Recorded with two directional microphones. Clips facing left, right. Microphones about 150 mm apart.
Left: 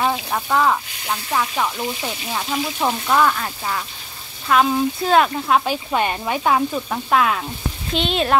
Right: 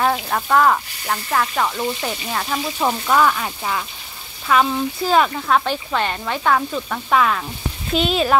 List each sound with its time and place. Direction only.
0.3 s speech: 5° left (ahead or behind)
5.9 s speech: 15° left (ahead or behind)
7.1 s speech: 5° left (ahead or behind)